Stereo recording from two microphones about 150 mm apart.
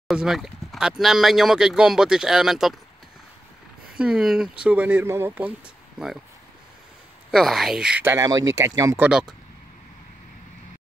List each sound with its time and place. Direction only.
0.1 s speech: centre (ahead or behind)
4.0 s speech: 5° right (ahead or behind)
7.2 s speech: centre (ahead or behind)
8.0 s speech: 15° right (ahead or behind)
9.0 s speech: 5° right (ahead or behind)